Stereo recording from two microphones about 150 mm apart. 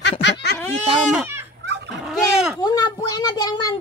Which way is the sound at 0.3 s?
90° left.